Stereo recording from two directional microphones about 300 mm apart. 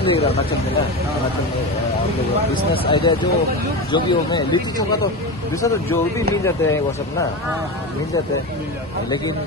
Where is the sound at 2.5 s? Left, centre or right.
Centre.